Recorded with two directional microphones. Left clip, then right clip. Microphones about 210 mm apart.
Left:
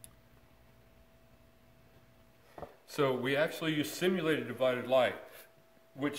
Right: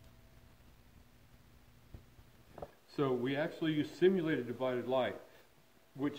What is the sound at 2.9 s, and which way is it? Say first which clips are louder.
Speech: left 4 dB; 30° left (ahead or behind).